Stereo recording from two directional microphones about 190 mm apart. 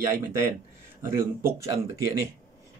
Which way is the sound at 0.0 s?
15° right (ahead or behind).